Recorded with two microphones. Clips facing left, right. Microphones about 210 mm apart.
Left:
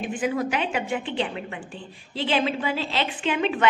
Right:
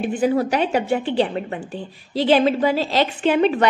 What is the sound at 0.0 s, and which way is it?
A woman's voice, 35° right (ahead or behind).